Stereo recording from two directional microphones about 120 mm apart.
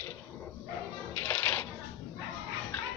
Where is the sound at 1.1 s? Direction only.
15° left (ahead or behind).